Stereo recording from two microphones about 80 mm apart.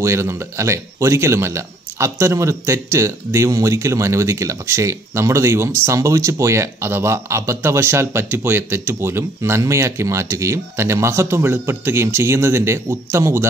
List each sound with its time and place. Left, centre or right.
0.0 s speech: right